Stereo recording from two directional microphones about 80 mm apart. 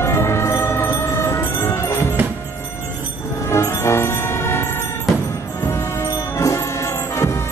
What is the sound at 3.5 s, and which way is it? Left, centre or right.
Music, left.